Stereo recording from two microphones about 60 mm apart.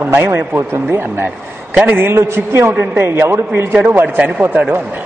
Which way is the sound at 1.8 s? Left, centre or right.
Right.